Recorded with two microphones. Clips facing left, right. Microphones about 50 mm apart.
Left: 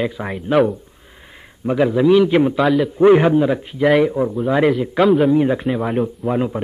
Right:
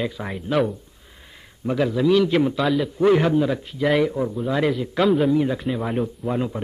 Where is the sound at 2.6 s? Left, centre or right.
Centre.